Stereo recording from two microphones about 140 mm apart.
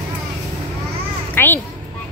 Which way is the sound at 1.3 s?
15° left (ahead or behind).